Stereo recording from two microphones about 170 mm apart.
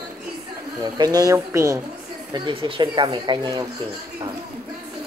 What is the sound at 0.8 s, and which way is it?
Speech, 25° right (ahead or behind).